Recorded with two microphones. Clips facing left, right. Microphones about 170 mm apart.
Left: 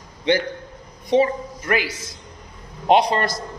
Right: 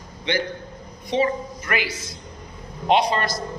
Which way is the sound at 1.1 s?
40° left (ahead or behind).